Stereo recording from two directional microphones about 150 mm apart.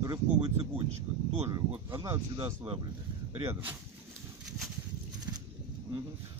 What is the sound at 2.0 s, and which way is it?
Speech, 25° right (ahead or behind).